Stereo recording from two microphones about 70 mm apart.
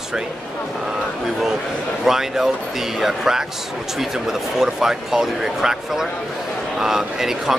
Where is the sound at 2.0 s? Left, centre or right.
Centre.